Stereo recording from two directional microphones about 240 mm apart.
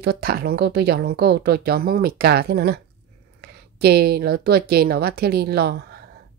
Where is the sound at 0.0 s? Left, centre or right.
Right.